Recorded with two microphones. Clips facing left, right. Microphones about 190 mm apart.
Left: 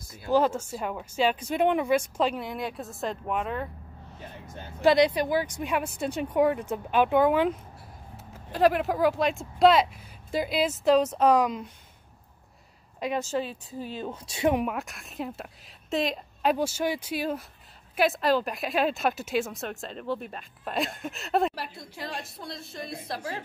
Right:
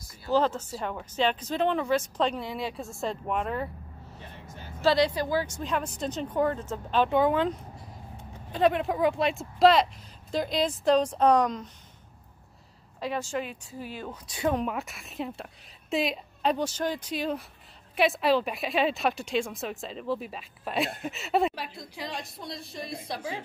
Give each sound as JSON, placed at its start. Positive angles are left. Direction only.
{"t": 0.3, "sound": "a woman's voice", "side_deg": 10}
{"t": 4.8, "sound": "a woman's voice", "side_deg": 15}
{"t": 13.0, "sound": "a woman's voice", "side_deg": 20}
{"t": 13.4, "sound": "a woman's voice", "side_deg": 30}
{"t": 14.5, "sound": "a woman's voice", "side_deg": 5}